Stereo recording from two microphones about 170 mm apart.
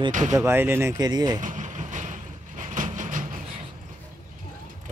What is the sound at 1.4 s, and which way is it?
Vehicle, 45° right (ahead or behind).